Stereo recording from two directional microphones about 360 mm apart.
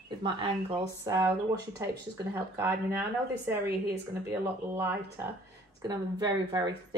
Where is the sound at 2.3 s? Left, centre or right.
Centre.